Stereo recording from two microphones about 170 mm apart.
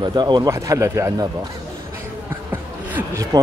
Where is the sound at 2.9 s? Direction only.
20° right (ahead or behind).